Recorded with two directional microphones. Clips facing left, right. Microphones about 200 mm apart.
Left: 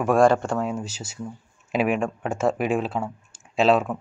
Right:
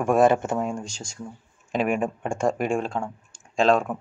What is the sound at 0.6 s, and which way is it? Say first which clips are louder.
Speech: left 1 dB; 5° left (ahead or behind).